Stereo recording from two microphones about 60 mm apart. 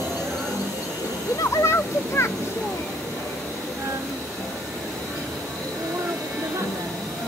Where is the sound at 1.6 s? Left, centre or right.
Left.